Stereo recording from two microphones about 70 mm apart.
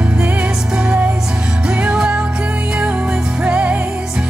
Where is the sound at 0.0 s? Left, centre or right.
Centre.